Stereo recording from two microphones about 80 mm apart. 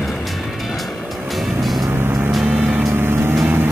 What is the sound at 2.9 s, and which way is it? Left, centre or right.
Vehicle, right.